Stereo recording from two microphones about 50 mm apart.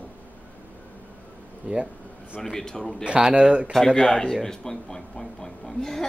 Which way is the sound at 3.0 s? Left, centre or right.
Centre.